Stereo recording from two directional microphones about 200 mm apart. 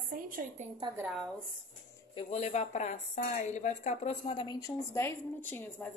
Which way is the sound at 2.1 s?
30° left (ahead or behind).